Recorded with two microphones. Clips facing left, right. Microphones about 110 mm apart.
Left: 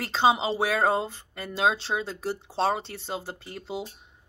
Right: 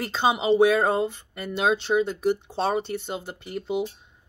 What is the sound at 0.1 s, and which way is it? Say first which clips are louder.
Speech: right 1 dB; 25° left (ahead or behind).